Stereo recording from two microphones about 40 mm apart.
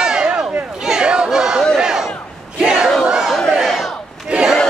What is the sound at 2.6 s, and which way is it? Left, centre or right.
Battle cry, right.